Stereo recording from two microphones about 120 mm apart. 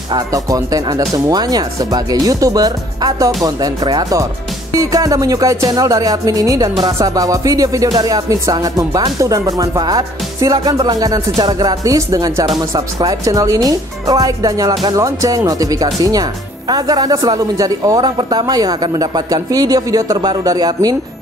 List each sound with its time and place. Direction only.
0.3 s speech: 30° right (ahead or behind)